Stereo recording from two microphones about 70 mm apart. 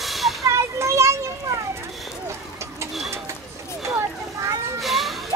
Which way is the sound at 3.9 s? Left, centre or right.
Right.